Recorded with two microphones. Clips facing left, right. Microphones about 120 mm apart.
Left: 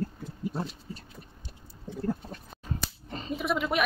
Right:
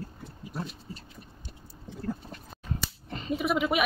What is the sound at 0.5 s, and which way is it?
Heart murmur, 25° left (ahead or behind).